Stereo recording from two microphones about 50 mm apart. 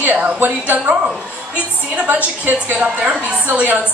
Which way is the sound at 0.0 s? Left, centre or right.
Right.